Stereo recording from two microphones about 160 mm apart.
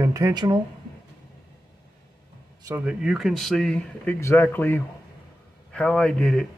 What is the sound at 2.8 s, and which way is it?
A man's voice, 5° right (ahead or behind).